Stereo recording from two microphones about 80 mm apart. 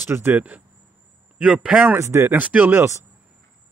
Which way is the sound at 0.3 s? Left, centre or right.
Centre.